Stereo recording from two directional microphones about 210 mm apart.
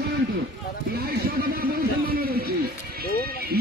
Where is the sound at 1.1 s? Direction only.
45° right (ahead or behind).